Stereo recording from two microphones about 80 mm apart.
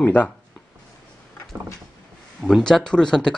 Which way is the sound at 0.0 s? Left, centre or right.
Centre.